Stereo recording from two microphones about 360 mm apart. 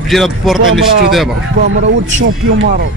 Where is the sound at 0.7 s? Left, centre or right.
Right.